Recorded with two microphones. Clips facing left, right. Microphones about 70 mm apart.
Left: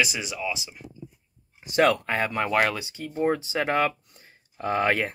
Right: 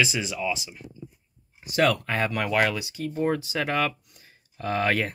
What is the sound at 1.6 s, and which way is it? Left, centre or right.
Speech, left.